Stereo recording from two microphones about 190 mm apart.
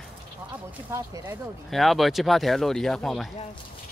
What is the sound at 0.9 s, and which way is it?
Speech, 15° right (ahead or behind).